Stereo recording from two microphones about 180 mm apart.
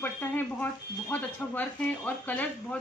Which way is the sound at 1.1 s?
10° left (ahead or behind).